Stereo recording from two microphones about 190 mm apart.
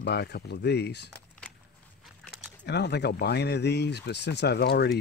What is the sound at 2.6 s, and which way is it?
Speech, 60° left (ahead or behind).